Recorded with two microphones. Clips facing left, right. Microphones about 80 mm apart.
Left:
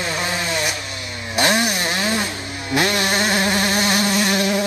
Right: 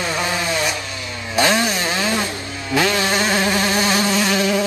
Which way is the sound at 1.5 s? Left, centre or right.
Centre.